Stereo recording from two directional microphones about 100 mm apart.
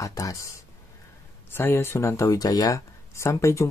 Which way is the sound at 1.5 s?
25° left (ahead or behind).